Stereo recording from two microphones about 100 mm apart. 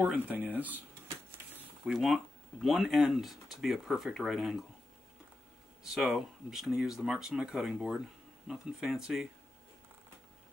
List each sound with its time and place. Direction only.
0.0 s speech: 15° right (ahead or behind)
1.9 s speech: 5° right (ahead or behind)
5.9 s speech: centre (ahead or behind)